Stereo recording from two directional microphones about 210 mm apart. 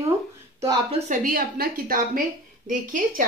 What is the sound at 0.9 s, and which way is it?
A woman's voice, 40° right (ahead or behind).